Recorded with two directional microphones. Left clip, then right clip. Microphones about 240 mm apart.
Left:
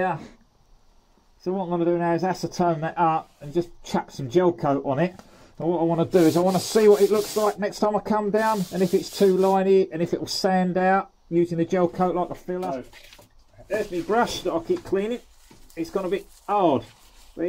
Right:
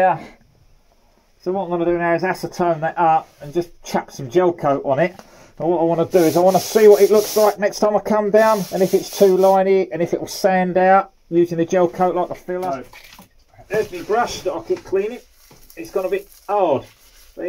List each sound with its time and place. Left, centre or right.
0.0 s speech: centre
1.4 s speech: centre
14.0 s speech: left